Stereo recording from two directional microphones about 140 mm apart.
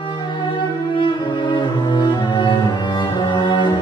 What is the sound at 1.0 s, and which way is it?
Cello, 35° left (ahead or behind).